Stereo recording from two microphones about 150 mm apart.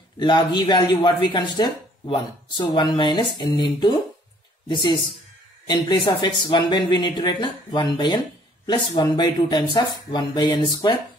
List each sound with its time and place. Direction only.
0.2 s speech: 30° left (ahead or behind)